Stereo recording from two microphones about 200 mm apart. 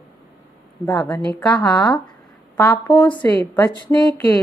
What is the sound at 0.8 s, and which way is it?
A woman's voice, 5° left (ahead or behind).